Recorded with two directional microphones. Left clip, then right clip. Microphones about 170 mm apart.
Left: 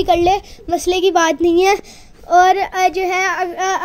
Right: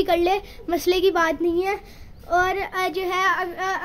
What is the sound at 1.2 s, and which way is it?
Speech, 30° left (ahead or behind).